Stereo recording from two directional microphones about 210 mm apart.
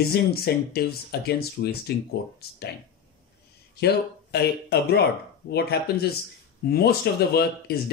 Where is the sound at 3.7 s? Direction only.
50° left (ahead or behind).